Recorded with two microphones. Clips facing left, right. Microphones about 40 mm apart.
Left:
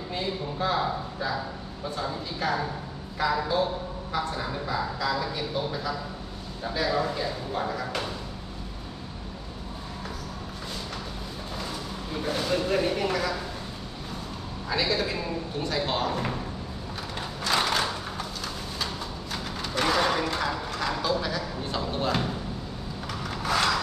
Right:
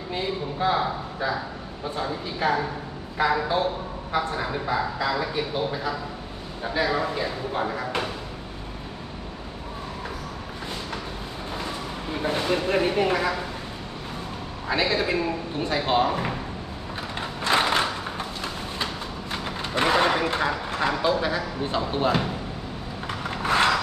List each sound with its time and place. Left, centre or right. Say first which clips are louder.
0.1 s a man's voice: right 3 dB; centre
11.6 s speech: right 3 dB; right
14.7 s speech: right 4 dB; right
17.2 s a sound: right 4 dB; right
19.3 s speech: right 3 dB; right
23.0 s a sound: right 4 dB; right